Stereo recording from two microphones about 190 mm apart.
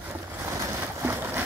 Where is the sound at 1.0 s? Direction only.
10° right (ahead or behind).